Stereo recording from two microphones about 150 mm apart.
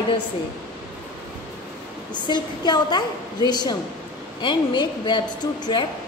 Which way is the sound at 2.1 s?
30° left (ahead or behind).